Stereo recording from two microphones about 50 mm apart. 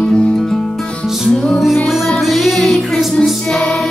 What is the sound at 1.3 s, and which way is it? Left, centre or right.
Music, centre.